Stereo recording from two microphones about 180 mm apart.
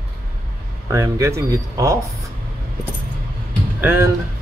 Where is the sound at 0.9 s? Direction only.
20° right (ahead or behind).